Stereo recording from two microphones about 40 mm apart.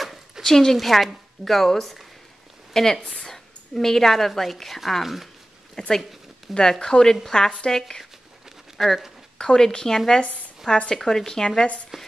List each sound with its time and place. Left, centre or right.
0.0 s a woman's voice: centre
3.3 s a sound: centre
4.3 s speech: centre
5.8 s speech: centre
8.7 s speech: centre
9.4 s speech: centre
11.9 s speech: centre